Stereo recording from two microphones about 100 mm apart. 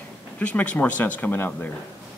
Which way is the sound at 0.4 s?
15° left (ahead or behind).